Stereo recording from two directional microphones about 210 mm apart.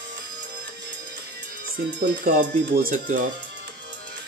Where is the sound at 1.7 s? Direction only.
45° right (ahead or behind).